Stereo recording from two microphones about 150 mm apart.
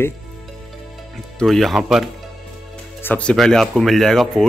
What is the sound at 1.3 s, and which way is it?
Speech, centre (ahead or behind).